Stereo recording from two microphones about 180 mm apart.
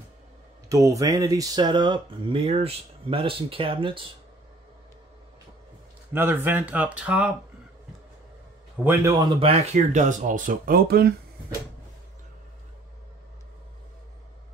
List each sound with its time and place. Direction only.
0.7 s speech: 15° right (ahead or behind)
6.1 s speech: 10° right (ahead or behind)
8.8 s speech: 20° right (ahead or behind); by 11.1 s 60° right (ahead or behind)